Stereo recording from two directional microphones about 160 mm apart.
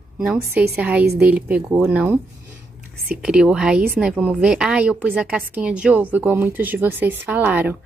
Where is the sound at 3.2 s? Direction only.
5° right (ahead or behind).